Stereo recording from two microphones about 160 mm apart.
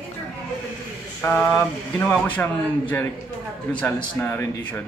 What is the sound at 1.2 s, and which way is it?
Speech, 10° left (ahead or behind).